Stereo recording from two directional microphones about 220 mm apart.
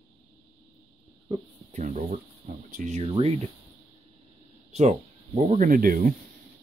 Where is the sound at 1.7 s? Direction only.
30° right (ahead or behind).